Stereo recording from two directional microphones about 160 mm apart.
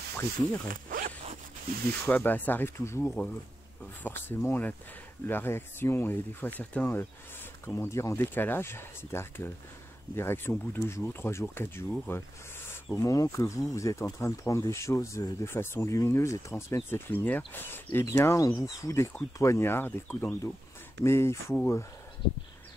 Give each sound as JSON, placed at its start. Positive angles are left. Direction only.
{"t": 0.7, "sound": "zipper", "side_deg": -60}
{"t": 2.0, "sound": "speech", "side_deg": 10}